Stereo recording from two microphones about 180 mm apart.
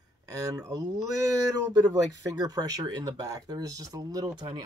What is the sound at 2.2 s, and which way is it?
Speech, 20° right (ahead or behind).